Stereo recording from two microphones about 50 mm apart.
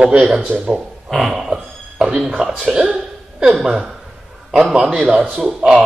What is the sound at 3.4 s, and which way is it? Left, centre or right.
A man's voice, centre.